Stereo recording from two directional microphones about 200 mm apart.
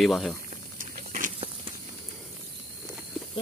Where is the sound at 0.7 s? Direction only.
45° right (ahead or behind).